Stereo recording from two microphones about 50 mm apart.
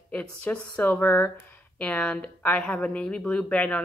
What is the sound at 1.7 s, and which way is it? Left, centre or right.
Speech, left.